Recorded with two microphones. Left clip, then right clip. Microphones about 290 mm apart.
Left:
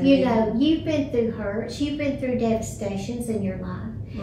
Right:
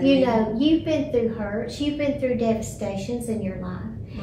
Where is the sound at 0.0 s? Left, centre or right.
Centre.